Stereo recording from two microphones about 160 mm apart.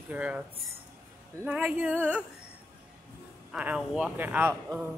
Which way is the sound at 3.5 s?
5° right (ahead or behind).